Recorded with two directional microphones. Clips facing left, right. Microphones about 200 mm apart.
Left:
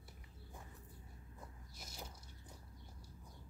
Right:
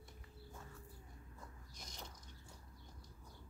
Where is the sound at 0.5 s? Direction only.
15° left (ahead or behind).